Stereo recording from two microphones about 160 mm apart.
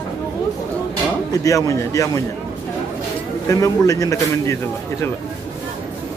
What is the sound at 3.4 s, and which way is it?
A man's voice, 20° left (ahead or behind).